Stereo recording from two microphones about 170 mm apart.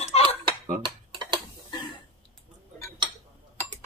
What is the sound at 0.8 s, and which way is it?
Dishes, 25° right (ahead or behind).